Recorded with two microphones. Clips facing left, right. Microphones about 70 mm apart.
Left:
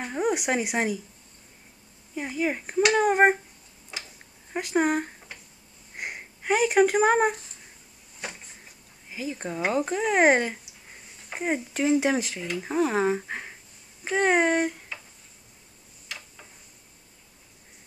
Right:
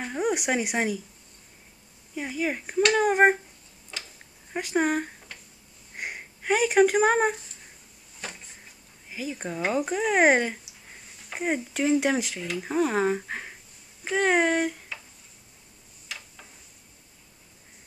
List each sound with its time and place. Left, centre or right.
0.0 s speech: centre
2.1 s speech: centre
3.9 s a sound: centre
4.5 s speech: centre
5.9 s a sound: centre
9.1 s speech: centre